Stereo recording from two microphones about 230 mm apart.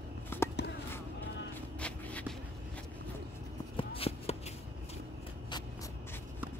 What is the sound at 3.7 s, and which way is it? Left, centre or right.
Shuffling cards, left.